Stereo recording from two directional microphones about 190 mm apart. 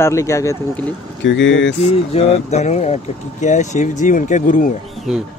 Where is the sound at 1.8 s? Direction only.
35° left (ahead or behind).